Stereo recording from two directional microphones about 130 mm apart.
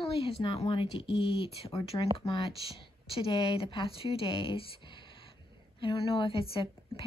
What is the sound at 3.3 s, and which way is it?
A woman's voice, 40° left (ahead or behind).